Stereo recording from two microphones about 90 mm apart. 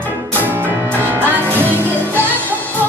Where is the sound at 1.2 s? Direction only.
20° left (ahead or behind).